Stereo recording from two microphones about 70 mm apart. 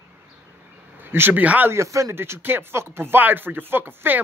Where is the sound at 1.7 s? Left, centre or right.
Right.